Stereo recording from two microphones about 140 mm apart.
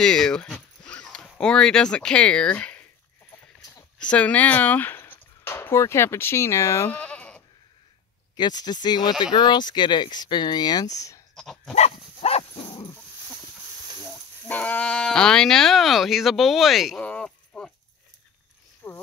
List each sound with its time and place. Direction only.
0.0 s speech: 5° left (ahead or behind)
4.0 s speech: 10° left (ahead or behind)
7.0 s sheep: 10° left (ahead or behind)
8.4 s speech: 30° left (ahead or behind)
11.3 s dog: centre (ahead or behind)
11.7 s dog: 50° left (ahead or behind)
14.0 s speech: 10° left (ahead or behind)
18.8 s speech: 10° left (ahead or behind)